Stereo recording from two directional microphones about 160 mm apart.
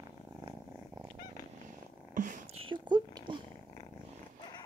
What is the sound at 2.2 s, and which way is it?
Purr, 55° right (ahead or behind).